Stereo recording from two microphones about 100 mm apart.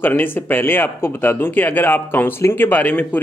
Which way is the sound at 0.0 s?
20° left (ahead or behind).